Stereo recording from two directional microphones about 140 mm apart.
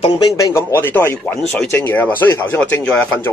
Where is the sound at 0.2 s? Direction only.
25° left (ahead or behind).